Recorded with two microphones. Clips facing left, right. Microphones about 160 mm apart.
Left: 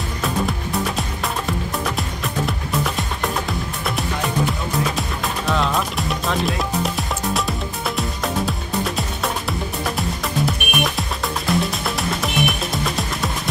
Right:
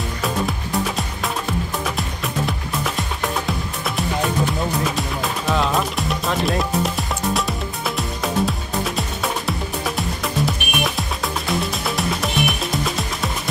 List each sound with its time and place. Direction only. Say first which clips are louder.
0.2 s music: left 1 dB; centre (ahead or behind)
4.5 s music: right 1 dB; centre (ahead or behind)